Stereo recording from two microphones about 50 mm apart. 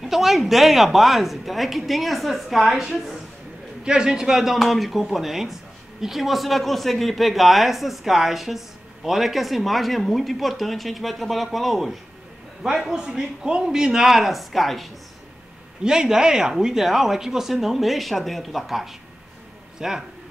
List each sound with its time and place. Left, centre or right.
0.0 s a man's voice: centre
3.8 s a man's voice: centre
12.9 s speech: centre
15.8 s a man's voice: centre
19.8 s speech: centre